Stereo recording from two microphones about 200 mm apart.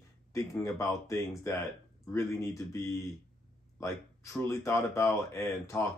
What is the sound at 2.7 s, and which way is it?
Speech, 15° left (ahead or behind).